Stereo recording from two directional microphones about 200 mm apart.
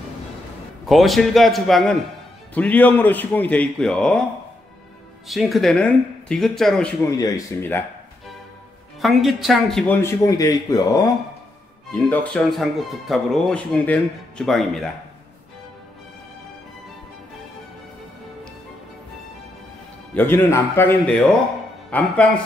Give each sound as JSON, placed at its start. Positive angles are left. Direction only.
{"t": 0.8, "sound": "a man's voice", "side_deg": 0}
{"t": 5.3, "sound": "speech", "side_deg": 0}
{"t": 7.0, "sound": "a man's voice", "side_deg": 15}
{"t": 9.0, "sound": "speech", "side_deg": 0}
{"t": 9.9, "sound": "a man's voice", "side_deg": 15}
{"t": 20.2, "sound": "a man's voice", "side_deg": 10}